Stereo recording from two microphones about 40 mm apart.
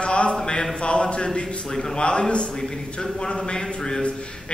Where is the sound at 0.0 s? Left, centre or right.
Left.